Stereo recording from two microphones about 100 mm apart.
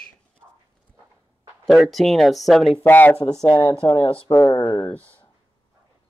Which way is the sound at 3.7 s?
55° left (ahead or behind).